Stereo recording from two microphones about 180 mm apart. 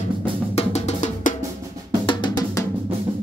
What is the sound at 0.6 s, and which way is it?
Drum, 35° left (ahead or behind).